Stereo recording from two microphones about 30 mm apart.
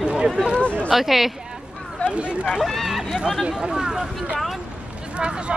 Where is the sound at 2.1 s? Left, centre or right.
Right.